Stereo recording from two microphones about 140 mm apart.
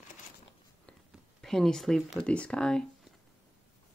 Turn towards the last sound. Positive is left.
turn(degrees=5)  # may be behind; listen again after turning